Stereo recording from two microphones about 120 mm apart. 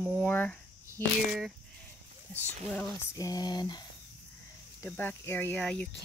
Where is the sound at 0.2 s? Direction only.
15° left (ahead or behind).